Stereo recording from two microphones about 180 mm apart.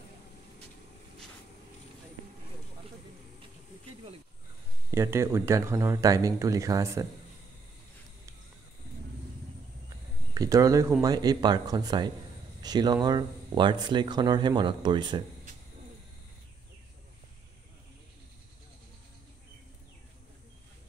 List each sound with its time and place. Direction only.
4.9 s speech: 15° right (ahead or behind)
10.3 s speech: 20° right (ahead or behind)